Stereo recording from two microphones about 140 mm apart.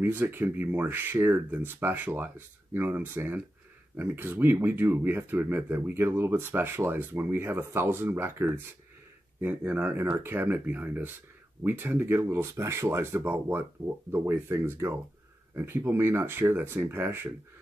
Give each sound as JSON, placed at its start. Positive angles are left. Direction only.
{"t": 0.0, "sound": "speech", "side_deg": -15}